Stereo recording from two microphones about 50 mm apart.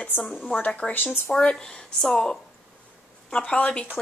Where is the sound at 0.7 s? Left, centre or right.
Left.